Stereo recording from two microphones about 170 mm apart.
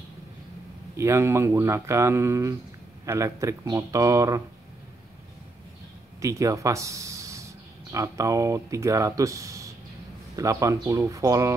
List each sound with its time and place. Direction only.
0.9 s speech: 15° right (ahead or behind)
6.2 s speech: 20° right (ahead or behind)